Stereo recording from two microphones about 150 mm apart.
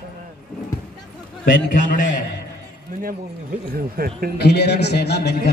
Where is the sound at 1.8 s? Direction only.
60° left (ahead or behind).